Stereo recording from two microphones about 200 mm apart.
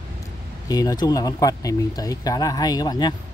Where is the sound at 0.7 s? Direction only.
20° left (ahead or behind).